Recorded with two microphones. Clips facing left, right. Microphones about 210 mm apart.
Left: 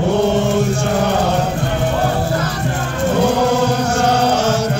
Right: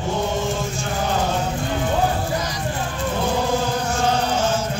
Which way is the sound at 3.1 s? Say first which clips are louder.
Left 7 dB; 70° left (ahead or behind).